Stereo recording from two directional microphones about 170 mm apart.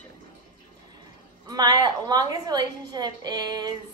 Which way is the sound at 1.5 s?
25° right (ahead or behind).